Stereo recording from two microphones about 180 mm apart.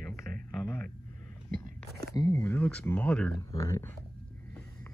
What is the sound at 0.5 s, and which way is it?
Speech, 10° left (ahead or behind).